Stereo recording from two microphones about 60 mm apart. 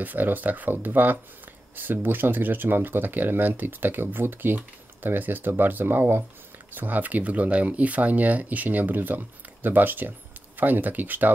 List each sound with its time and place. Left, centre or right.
0.0 s speech: right